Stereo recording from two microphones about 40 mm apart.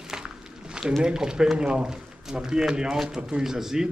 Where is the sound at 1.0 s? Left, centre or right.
Centre.